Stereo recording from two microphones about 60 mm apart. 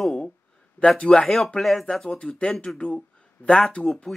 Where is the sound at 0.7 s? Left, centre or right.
Centre.